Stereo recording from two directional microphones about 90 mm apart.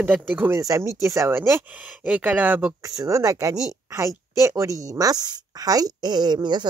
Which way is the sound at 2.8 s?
35° right (ahead or behind).